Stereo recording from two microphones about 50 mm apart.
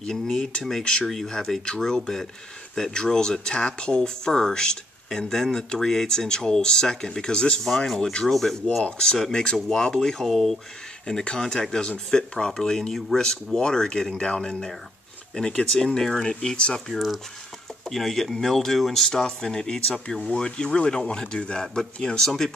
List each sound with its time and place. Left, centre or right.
0.0 s speech: centre
8.3 s speech: centre
9.3 s speech: centre
11.1 s speech: centre
16.9 s speech: centre
19.0 s speech: centre